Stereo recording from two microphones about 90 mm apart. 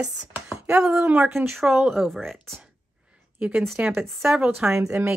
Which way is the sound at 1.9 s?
5° right (ahead or behind).